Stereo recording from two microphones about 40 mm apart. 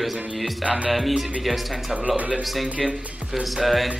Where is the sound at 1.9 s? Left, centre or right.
Right.